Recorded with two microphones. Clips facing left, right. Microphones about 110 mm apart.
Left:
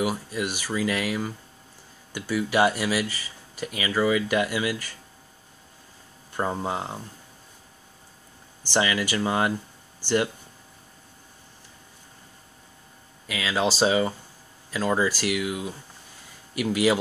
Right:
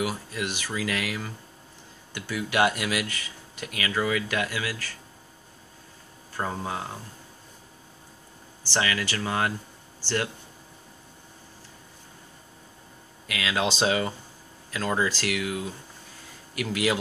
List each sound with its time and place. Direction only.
0.0 s speech: 10° left (ahead or behind)
6.3 s speech: 20° left (ahead or behind)
8.6 s speech: 15° left (ahead or behind)
13.3 s speech: centre (ahead or behind)